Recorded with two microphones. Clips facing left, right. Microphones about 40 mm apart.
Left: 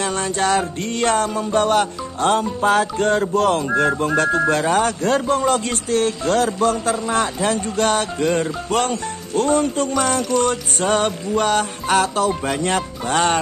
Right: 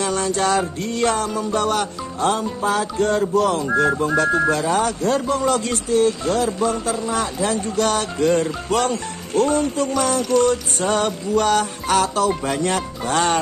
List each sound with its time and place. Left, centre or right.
0.0 s music: left
4.0 s speech: left
7.4 s music: left
9.4 s speech: left
9.9 s music: left
11.1 s music: left
12.3 s speech: centre
12.6 s speech: left